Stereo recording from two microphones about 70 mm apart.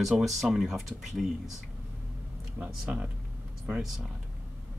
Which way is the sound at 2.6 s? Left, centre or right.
Right.